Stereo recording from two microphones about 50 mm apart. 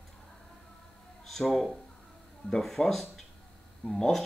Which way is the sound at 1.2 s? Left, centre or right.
Centre.